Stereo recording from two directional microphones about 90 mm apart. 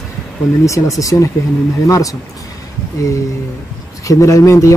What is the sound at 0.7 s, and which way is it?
Speech, 40° left (ahead or behind).